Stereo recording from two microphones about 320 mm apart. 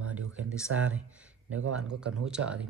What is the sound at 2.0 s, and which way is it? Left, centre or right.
Speech, centre.